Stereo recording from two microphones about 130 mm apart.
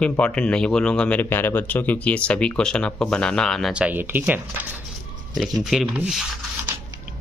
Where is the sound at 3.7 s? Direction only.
10° right (ahead or behind).